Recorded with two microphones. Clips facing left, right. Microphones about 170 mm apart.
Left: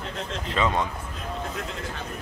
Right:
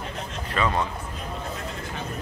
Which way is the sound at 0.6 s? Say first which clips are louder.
Even; 20° left (ahead or behind).